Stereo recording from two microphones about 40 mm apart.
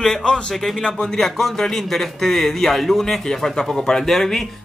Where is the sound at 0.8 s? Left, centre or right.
Centre.